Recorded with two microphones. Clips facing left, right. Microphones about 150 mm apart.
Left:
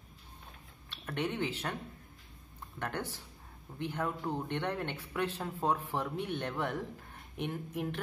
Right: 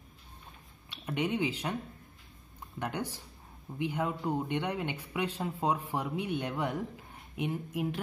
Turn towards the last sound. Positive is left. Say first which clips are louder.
# right 3 dB
turn(degrees=-10)  # may be behind; listen again after turning